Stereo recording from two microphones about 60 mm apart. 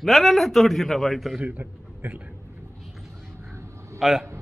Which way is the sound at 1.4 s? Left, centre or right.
Right.